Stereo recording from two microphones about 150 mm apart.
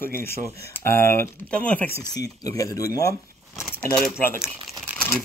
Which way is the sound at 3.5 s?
Centre (ahead or behind).